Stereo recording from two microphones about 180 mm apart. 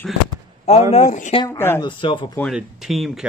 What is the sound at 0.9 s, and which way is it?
Speech, 45° left (ahead or behind).